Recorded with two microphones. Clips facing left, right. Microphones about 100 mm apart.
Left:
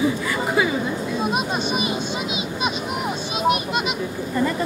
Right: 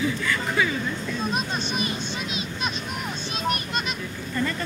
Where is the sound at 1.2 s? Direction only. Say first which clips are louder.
Left 5 dB; 10° left (ahead or behind).